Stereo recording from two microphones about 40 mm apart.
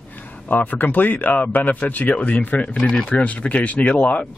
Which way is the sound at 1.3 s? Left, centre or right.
Left.